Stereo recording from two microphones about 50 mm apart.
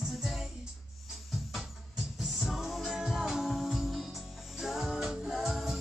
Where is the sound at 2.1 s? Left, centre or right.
Centre.